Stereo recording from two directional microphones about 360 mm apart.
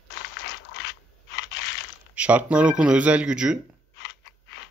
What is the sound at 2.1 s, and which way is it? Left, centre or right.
Speech, centre.